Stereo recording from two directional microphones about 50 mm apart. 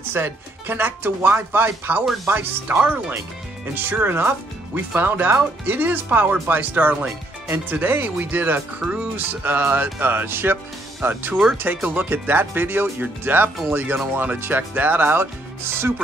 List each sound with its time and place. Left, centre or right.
0.1 s speech: right
12.1 s speech: right
13.9 s speech: right